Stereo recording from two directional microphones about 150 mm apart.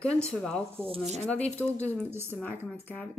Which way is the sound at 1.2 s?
10° left (ahead or behind).